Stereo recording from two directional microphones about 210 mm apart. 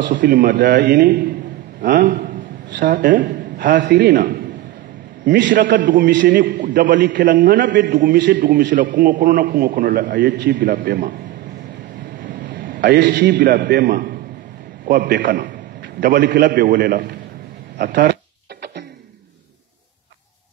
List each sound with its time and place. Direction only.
0.2 s a man's voice: 40° right (ahead or behind)
6.0 s a man's voice: 55° right (ahead or behind)
6.3 s a man's voice: 40° right (ahead or behind)
12.4 s a sound: 40° right (ahead or behind)
12.9 s a man's voice: 45° right (ahead or behind)